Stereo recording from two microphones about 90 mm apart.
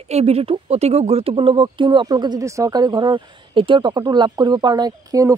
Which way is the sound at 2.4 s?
40° right (ahead or behind).